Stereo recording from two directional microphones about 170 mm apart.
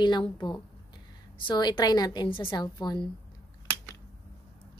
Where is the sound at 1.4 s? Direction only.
25° left (ahead or behind).